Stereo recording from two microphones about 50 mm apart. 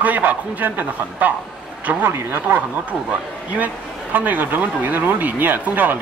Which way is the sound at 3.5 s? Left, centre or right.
Right.